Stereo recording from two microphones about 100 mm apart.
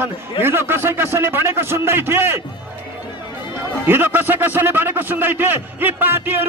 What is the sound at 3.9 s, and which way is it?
Speech, 20° right (ahead or behind).